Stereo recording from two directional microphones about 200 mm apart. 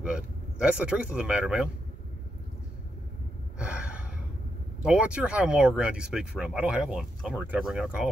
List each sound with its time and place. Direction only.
0.0 s speech: 5° right (ahead or behind)
3.5 s gasp: 5° right (ahead or behind)
4.8 s speech: 5° right (ahead or behind)